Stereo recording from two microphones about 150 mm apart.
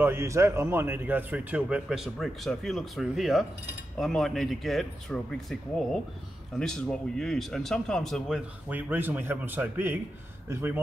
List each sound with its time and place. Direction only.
0.0 s a man's voice: 15° right (ahead or behind); by 8.4 s centre (ahead or behind)
8.6 s a man's voice: 10° right (ahead or behind)